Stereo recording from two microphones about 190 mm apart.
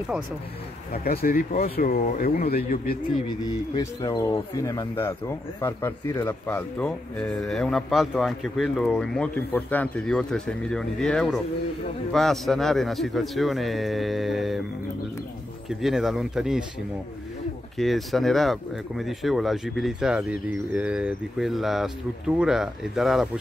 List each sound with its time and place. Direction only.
1.0 s speech: 50° left (ahead or behind)
3.7 s speech: 20° left (ahead or behind); by 14.6 s centre (ahead or behind)
15.7 s speech: centre (ahead or behind)
17.7 s speech: centre (ahead or behind)